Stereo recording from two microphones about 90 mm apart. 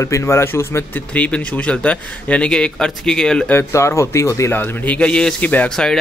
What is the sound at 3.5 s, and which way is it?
Speech, 30° left (ahead or behind).